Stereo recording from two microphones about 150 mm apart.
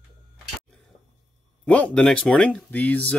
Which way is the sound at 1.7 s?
10° left (ahead or behind).